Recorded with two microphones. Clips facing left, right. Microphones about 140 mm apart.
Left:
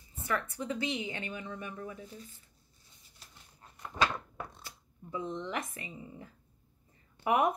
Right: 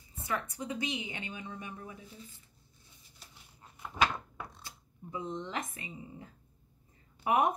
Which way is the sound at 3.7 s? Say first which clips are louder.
Even; 5° right (ahead or behind).